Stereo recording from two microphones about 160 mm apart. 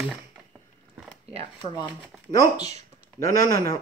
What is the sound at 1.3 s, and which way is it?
Speech, 35° right (ahead or behind).